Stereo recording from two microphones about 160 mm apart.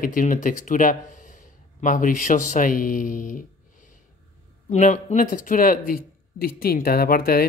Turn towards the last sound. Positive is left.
turn(degrees=70)  # may be behind; listen again after turning